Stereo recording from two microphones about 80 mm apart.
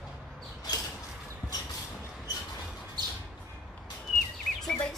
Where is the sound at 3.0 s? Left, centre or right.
Right.